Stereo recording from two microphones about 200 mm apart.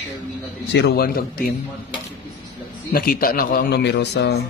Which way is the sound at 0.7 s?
55° left (ahead or behind).